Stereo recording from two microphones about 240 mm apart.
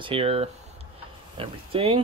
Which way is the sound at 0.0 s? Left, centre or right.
Right.